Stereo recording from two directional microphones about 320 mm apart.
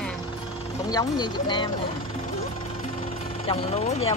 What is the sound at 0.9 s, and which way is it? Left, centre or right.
Speech, centre.